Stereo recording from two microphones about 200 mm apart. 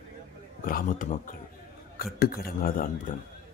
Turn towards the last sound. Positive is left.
turn(degrees=45)  # may be behind; listen again after turning